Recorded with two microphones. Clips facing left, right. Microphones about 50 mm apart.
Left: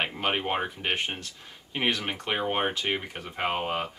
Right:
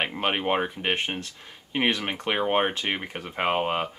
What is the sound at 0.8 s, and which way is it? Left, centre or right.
Speech, right.